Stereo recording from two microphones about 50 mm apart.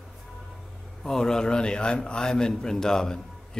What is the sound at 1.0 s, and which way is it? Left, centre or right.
A man's voice, centre.